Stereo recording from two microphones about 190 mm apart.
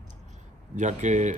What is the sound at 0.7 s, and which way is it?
Speech, 40° right (ahead or behind).